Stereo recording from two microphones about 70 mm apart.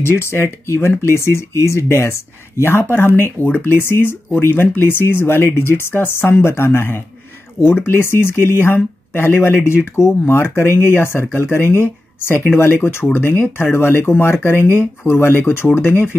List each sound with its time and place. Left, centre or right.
0.0 s speech: left